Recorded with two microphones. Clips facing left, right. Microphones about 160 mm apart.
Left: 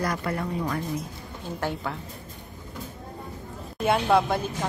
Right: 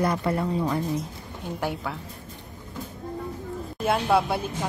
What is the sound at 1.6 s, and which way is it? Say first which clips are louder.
Speech: even; 10° right (ahead or behind).